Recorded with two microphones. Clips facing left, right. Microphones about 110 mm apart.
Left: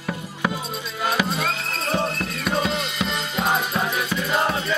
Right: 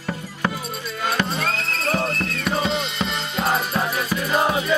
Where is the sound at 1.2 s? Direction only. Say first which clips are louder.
Even; 5° left (ahead or behind).